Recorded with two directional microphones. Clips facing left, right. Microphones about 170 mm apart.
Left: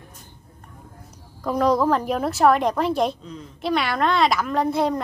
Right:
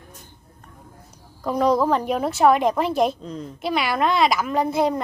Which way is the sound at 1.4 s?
Centre (ahead or behind).